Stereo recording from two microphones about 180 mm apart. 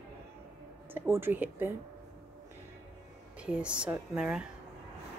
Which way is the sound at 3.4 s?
5° right (ahead or behind).